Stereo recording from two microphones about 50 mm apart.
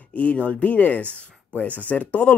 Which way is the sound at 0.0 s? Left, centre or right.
Left.